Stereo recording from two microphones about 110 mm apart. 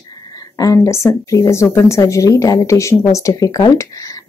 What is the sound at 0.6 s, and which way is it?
Speech, 30° left (ahead or behind).